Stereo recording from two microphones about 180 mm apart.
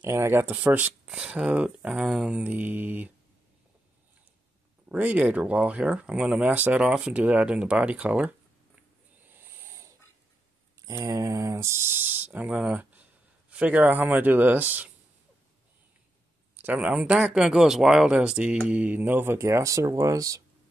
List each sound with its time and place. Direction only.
0.0 s speech: 15° right (ahead or behind)
4.8 s speech: 10° right (ahead or behind)
9.3 s snoring: 15° right (ahead or behind)
10.8 s speech: 20° right (ahead or behind)
16.6 s speech: 10° right (ahead or behind)